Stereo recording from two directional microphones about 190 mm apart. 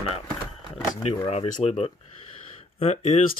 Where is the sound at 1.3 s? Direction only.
35° left (ahead or behind).